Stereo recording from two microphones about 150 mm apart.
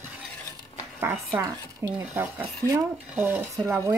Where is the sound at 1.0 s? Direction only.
15° right (ahead or behind).